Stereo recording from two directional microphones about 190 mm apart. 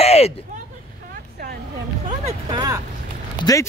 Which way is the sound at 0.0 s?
35° left (ahead or behind).